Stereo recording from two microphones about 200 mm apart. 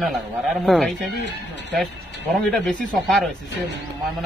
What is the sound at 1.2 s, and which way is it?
Speech, 60° left (ahead or behind).